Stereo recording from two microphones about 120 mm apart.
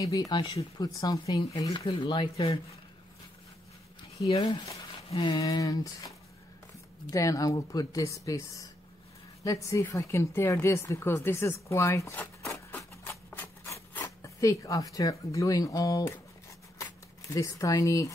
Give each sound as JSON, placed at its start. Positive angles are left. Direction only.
{"t": 0.0, "sound": "speech", "side_deg": 30}
{"t": 5.1, "sound": "a sound", "side_deg": 45}
{"t": 5.4, "sound": "speech", "side_deg": 30}
{"t": 7.1, "sound": "a woman's voice", "side_deg": 30}
{"t": 12.5, "sound": "rub", "side_deg": 20}
{"t": 13.9, "sound": "speech", "side_deg": 25}
{"t": 16.7, "sound": "a sound", "side_deg": 25}